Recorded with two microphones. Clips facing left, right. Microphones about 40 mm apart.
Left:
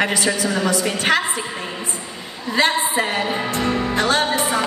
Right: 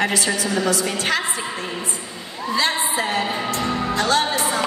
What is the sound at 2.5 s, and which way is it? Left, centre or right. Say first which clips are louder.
A woman's voice: left 3 dB; left.